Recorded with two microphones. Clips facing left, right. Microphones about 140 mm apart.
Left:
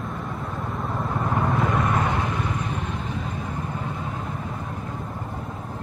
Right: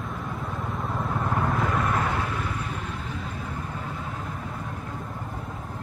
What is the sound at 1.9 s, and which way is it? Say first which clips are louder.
Vehicle: left 2 dB; 20° left (ahead or behind).